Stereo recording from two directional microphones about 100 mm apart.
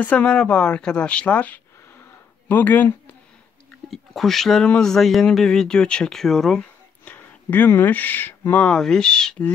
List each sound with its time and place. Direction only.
0.0 s speech: 15° left (ahead or behind)
3.9 s speech: centre (ahead or behind)
7.1 s speech: 20° left (ahead or behind)